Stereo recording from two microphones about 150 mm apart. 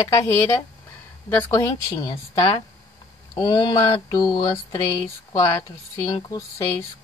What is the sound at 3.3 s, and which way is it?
Speech, 30° left (ahead or behind).